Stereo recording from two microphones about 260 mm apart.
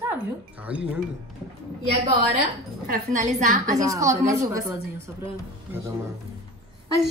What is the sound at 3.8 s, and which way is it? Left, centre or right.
A woman's voice, centre.